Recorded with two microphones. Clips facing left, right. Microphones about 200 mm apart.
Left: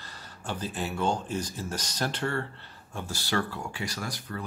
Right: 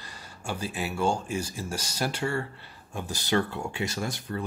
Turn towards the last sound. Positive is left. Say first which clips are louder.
# right 4 dB
turn(degrees=-25)  # may be behind; listen again after turning